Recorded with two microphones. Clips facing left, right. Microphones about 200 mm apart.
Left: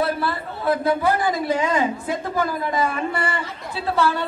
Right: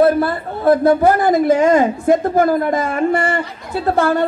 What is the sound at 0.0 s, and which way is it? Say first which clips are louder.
A woman's voice: right 9 dB; 50° right (ahead or behind).